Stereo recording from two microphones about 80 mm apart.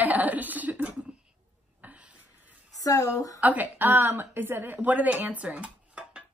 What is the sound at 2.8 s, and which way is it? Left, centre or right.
Speech, left.